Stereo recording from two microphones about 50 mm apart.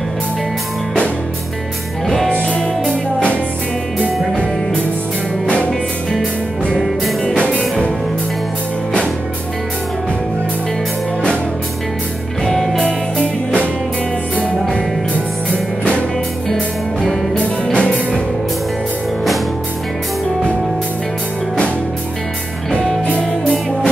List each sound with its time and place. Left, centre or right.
2.0 s music: centre
2.3 s music: left
7.3 s music: left
12.4 s music: centre
15.8 s music: left
16.4 s music: centre